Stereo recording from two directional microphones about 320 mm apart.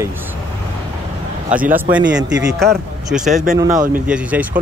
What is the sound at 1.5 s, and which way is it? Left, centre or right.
Speech, centre.